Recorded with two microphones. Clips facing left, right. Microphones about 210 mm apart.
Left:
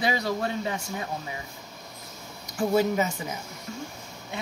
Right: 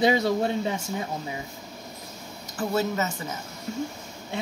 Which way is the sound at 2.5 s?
10° left (ahead or behind).